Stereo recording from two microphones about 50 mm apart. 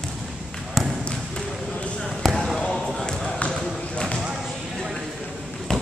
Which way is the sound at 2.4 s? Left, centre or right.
Centre.